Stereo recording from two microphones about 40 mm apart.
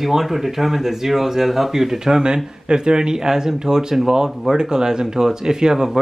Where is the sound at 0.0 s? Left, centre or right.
Centre.